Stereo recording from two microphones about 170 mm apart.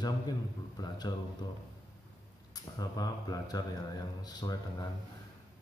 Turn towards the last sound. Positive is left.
turn(degrees=25)  # may be behind; listen again after turning